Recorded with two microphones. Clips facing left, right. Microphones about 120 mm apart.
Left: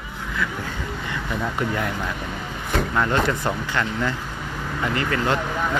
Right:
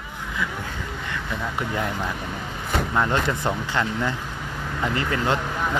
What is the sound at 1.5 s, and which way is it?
Speech, 15° right (ahead or behind).